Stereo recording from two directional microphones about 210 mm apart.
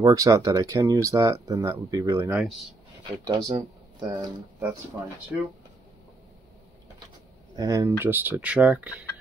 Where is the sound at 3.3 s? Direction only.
15° right (ahead or behind).